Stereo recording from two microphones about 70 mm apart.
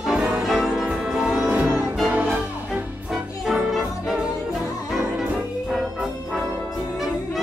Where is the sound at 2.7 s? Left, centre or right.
Centre.